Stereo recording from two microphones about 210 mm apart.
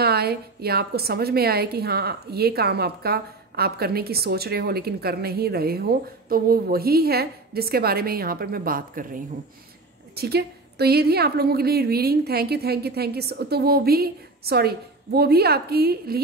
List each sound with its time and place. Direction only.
0.0 s a woman's voice: 50° right (ahead or behind)